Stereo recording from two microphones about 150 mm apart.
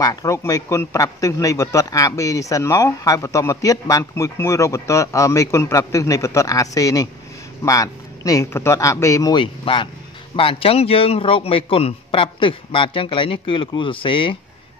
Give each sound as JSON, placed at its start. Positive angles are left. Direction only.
{"t": 0.0, "sound": "a man's voice", "side_deg": 25}